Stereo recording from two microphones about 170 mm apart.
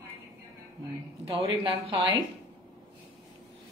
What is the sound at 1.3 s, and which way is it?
Speech, 35° right (ahead or behind).